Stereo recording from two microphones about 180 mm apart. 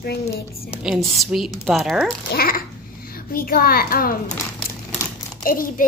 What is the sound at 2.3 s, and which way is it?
A child's voice, 55° left (ahead or behind).